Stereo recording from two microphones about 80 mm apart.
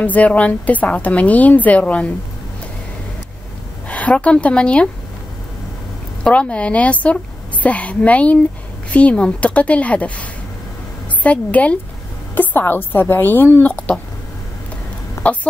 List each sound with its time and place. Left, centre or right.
0.0 s a woman's voice: centre
3.9 s speech: centre
6.2 s a woman's voice: centre
11.2 s a woman's voice: centre
15.2 s speech: centre